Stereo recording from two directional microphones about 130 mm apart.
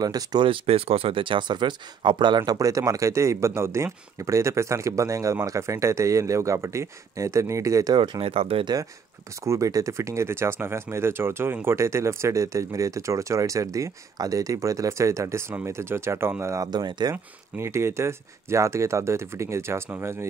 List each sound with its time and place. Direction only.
0.0 s speech: 30° right (ahead or behind); by 8.6 s 45° right (ahead or behind)
9.4 s speech: 25° right (ahead or behind)
17.1 s speech: 20° right (ahead or behind)